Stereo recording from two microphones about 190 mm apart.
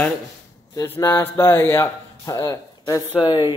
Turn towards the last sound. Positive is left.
turn(degrees=25)  # may be behind; listen again after turning